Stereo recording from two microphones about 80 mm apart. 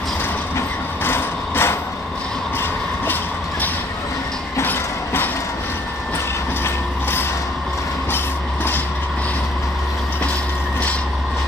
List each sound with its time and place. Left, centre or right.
0.6 s vehicle: left
4.6 s train: left
6.6 s vehicle: left